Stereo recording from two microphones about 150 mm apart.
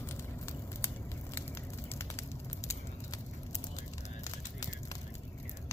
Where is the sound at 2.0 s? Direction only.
20° left (ahead or behind).